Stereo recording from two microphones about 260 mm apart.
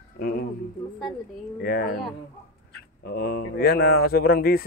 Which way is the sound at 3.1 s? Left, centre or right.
Left.